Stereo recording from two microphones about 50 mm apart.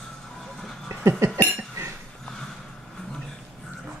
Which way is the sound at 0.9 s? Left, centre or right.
Right.